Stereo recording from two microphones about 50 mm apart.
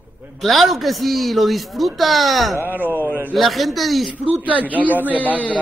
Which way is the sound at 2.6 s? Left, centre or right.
Right.